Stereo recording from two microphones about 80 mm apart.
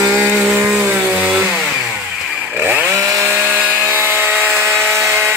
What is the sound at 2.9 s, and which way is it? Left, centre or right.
Chainsaw, right.